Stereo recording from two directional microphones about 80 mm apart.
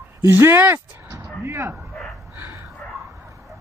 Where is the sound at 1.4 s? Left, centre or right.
Right.